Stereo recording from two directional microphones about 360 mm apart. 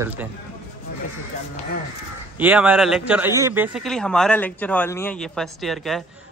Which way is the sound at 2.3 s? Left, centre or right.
Centre.